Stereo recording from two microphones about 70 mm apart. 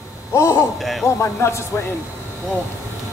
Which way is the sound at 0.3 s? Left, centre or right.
Left.